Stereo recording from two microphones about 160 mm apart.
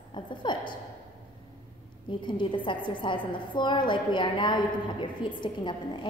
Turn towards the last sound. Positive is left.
turn(degrees=30)  # may be behind; listen again after turning